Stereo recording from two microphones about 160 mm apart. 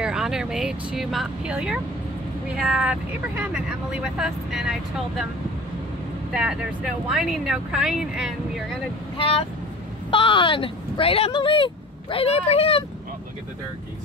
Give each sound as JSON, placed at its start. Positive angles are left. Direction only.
{"t": 0.0, "sound": "speech", "side_deg": -5}
{"t": 6.3, "sound": "speech", "side_deg": -5}
{"t": 10.1, "sound": "speech", "side_deg": 30}